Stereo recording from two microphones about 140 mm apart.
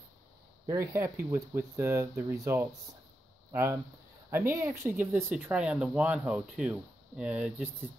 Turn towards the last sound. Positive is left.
turn(degrees=-10)  # may be behind; listen again after turning